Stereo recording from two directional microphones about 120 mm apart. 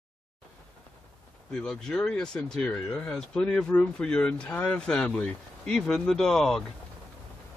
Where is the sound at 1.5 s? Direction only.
5° left (ahead or behind).